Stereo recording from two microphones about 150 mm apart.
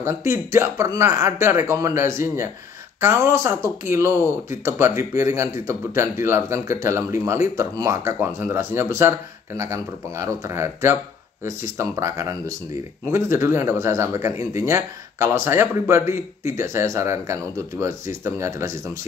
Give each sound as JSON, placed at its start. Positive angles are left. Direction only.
{"t": 0.0, "sound": "a man's voice", "side_deg": -20}